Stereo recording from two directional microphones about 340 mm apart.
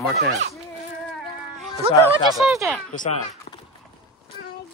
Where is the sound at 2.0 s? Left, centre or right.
Centre.